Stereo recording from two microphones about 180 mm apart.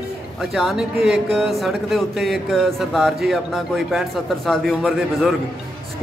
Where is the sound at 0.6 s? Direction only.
Centre (ahead or behind).